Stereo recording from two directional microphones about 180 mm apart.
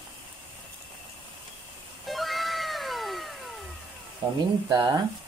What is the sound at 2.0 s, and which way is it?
Cat, centre (ahead or behind).